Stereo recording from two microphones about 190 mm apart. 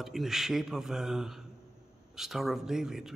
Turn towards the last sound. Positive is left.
turn(degrees=0)  # may be behind; listen again after turning